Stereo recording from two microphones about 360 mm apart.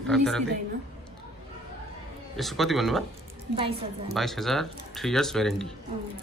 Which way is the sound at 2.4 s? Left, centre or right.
Centre.